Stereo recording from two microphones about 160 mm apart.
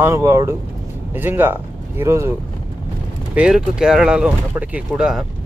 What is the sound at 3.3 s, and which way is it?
Speech, 5° right (ahead or behind).